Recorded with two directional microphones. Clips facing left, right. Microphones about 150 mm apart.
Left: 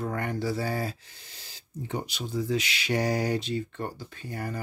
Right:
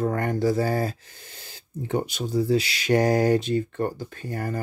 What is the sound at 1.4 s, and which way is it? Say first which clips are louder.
Speech: right 4 dB; 55° right (ahead or behind).